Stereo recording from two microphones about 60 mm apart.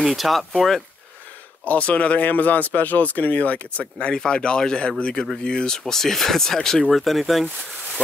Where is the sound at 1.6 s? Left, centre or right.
Left.